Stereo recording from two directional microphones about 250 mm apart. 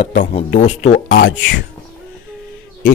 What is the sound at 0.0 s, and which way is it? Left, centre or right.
Speech, left.